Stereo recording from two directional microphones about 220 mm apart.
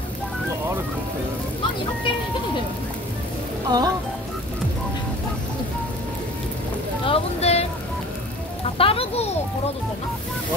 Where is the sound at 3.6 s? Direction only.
20° right (ahead or behind).